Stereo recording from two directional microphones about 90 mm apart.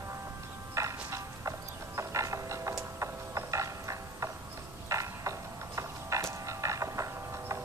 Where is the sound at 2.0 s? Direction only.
35° right (ahead or behind).